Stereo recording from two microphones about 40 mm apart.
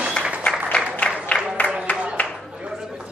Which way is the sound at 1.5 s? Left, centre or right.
Left.